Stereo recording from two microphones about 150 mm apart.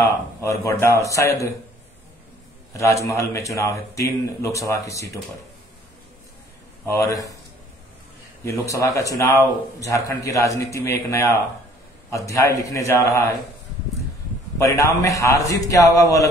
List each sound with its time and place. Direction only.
0.0 s a man's voice: 20° left (ahead or behind)
2.8 s a man's voice: 20° left (ahead or behind)
6.9 s a man's voice: 20° left (ahead or behind)
8.5 s a man's voice: 20° left (ahead or behind)
14.6 s a man's voice: 20° left (ahead or behind)